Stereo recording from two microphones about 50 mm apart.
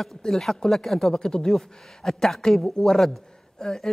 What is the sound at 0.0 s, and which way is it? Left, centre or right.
Speech, centre.